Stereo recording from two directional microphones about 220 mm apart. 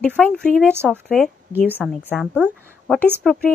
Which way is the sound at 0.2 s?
5° left (ahead or behind).